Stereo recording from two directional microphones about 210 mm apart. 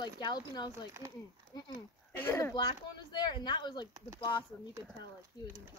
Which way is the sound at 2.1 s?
10° left (ahead or behind).